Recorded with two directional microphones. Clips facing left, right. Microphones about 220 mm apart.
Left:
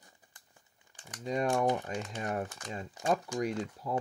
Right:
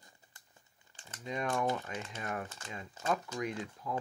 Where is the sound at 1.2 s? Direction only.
40° left (ahead or behind).